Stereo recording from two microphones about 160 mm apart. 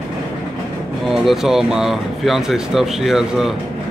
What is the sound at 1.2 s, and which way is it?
Speech, 5° right (ahead or behind).